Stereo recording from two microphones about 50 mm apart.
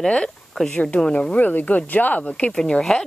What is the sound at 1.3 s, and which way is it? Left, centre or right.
Speech, left.